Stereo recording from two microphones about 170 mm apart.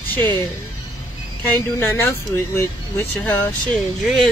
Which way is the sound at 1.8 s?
15° left (ahead or behind).